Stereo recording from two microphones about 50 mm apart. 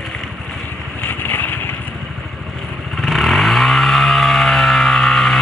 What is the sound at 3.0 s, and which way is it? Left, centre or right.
Vehicle, centre.